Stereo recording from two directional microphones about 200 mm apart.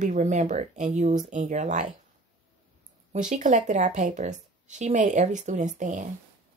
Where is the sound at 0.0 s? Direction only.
35° right (ahead or behind).